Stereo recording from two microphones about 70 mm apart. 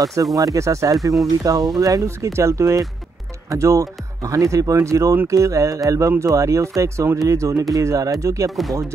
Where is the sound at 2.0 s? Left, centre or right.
Right.